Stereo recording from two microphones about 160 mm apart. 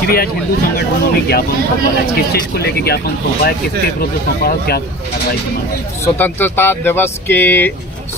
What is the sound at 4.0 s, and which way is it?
Speech, 70° left (ahead or behind).